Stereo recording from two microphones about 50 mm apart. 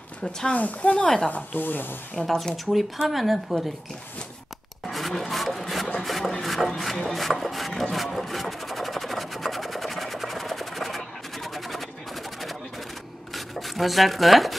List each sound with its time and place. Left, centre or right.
0.5 s speech: left
1.3 s speech: left
2.1 s a sound: centre
4.8 s music: centre
5.3 s sawing: centre
5.9 s a sound: centre
13.3 s rub: centre